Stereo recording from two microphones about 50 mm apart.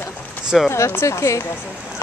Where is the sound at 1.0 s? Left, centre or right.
Left.